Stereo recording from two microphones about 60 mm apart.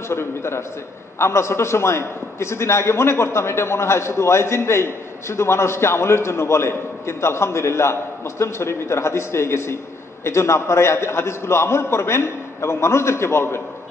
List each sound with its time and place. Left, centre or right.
0.1 s a man's voice: left